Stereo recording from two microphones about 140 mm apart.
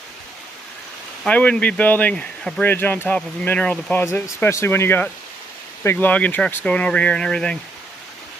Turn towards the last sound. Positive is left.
turn(degrees=5)  # may be behind; listen again after turning